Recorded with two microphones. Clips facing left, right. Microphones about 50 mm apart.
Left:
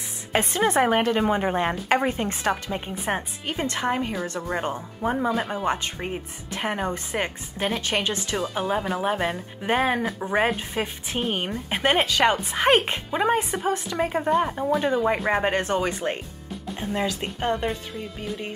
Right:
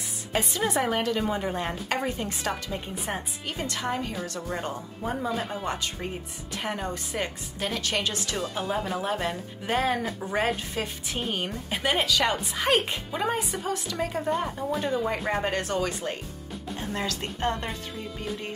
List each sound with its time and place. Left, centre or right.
0.3 s speech: left
5.4 s a woman's voice: centre
5.7 s a woman's voice: left
16.8 s speech: centre